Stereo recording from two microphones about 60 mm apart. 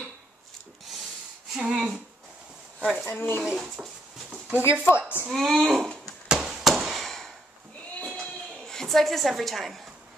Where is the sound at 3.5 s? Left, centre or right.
Centre.